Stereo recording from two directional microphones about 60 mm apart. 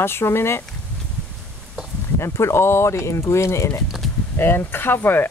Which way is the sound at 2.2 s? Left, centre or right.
Left.